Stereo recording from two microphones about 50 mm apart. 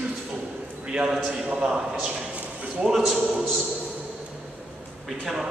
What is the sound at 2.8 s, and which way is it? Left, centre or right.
Speech, centre.